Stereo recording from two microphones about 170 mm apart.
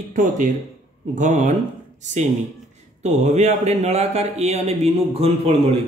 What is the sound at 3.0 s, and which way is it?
Speech, 40° right (ahead or behind).